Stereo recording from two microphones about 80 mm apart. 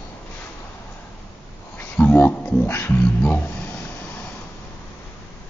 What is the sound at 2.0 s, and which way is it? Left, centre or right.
Speech, left.